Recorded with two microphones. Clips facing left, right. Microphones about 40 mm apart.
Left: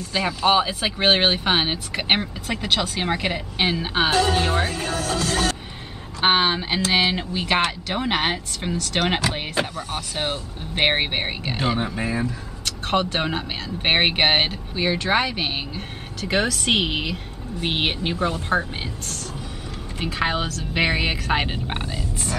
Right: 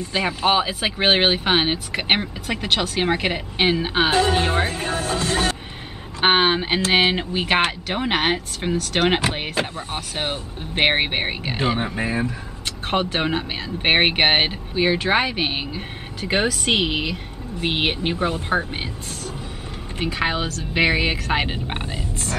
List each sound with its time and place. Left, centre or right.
0.1 s speech: centre
4.1 s speech: right
16.8 s speech: centre
18.0 s speech: centre
20.1 s speech: centre